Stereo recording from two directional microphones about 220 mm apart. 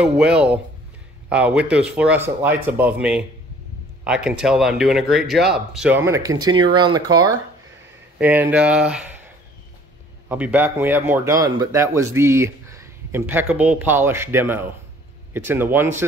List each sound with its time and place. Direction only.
0.0 s a man's voice: 5° right (ahead or behind)
10.2 s a man's voice: 10° right (ahead or behind)